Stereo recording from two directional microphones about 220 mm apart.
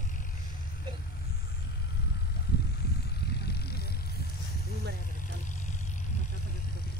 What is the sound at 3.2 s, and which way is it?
Vehicle, 45° left (ahead or behind).